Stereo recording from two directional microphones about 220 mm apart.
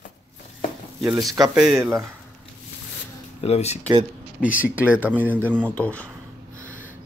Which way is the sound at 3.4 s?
30° left (ahead or behind).